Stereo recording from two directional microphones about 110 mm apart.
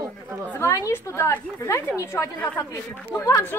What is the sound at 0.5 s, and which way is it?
A woman's voice, 25° left (ahead or behind).